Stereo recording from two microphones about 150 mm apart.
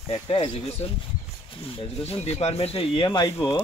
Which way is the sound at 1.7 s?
40° left (ahead or behind).